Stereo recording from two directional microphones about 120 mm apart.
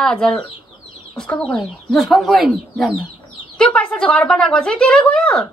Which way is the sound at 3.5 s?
5° left (ahead or behind).